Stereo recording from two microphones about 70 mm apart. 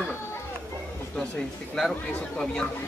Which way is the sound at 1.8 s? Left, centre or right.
Centre.